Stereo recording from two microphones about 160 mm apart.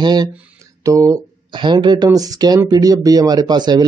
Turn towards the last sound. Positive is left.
turn(degrees=-25)  # may be behind; listen again after turning